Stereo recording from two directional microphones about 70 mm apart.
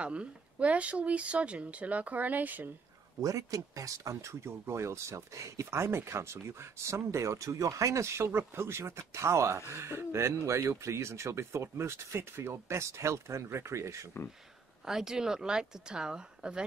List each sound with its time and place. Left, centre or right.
0.0 s speech: centre
3.2 s speech: right
14.2 s speech: left
14.9 s speech: centre